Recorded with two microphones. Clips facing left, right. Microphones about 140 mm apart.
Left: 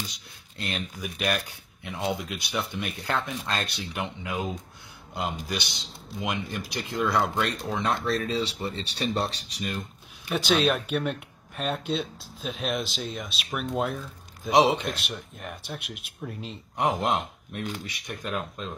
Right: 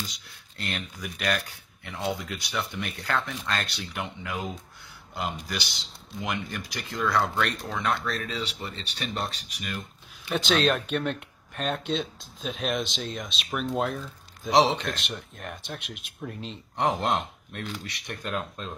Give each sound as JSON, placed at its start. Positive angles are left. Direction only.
{"t": 0.6, "sound": "speech", "side_deg": 20}
{"t": 8.0, "sound": "speech", "side_deg": 30}
{"t": 10.3, "sound": "speech", "side_deg": 5}